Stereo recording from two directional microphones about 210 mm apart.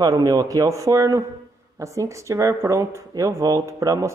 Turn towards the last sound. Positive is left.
turn(degrees=-15)  # may be behind; listen again after turning